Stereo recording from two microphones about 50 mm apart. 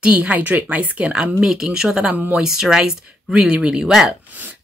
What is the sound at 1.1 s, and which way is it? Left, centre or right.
Speech, centre.